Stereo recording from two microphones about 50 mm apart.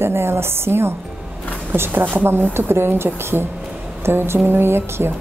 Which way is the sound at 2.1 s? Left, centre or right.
Right.